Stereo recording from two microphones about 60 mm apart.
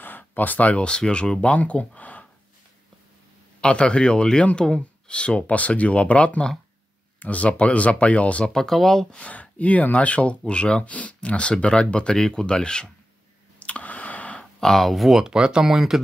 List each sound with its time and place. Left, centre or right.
0.0 s speech: left
3.6 s speech: centre
8.5 s speech: centre
9.1 s speech: left
13.6 s a sound: left
14.4 s speech: centre
15.3 s speech: centre